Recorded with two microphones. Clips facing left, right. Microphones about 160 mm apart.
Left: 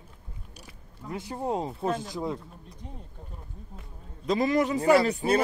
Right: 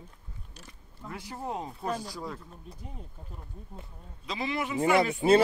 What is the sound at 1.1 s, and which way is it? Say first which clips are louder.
Speech: left 6 dB; 20° left (ahead or behind).